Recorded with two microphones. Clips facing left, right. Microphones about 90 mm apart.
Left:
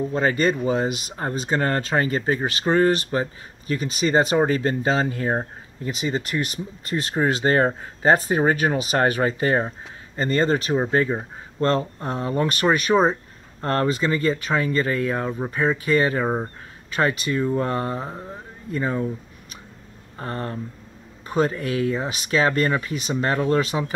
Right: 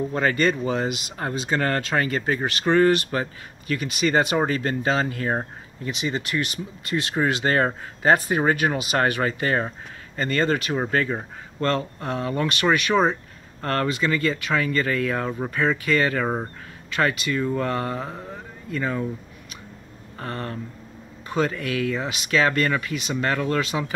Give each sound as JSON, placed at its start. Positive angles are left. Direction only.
{"t": 0.1, "sound": "speech", "side_deg": 20}
{"t": 0.7, "sound": "speech", "side_deg": 40}
{"t": 2.0, "sound": "speech", "side_deg": 25}
{"t": 5.9, "sound": "speech", "side_deg": 40}
{"t": 10.7, "sound": "speech", "side_deg": 20}
{"t": 12.4, "sound": "speech", "side_deg": 40}
{"t": 13.1, "sound": "speech", "side_deg": 25}
{"t": 20.2, "sound": "speech", "side_deg": 30}